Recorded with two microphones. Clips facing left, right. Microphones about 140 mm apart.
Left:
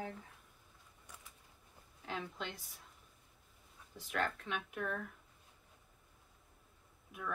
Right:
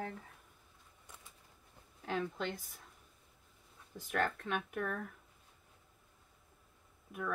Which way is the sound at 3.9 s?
45° right (ahead or behind).